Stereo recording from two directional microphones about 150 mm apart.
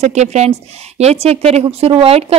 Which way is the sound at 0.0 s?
50° right (ahead or behind).